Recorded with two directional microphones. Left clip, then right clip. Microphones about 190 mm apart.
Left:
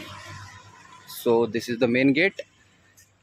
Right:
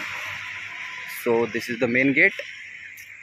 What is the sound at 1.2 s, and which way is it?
Speech, centre (ahead or behind).